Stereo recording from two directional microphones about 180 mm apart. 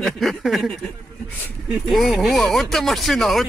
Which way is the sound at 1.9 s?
Centre (ahead or behind).